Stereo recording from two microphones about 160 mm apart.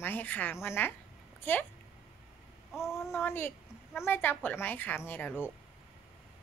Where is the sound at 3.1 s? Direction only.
15° left (ahead or behind).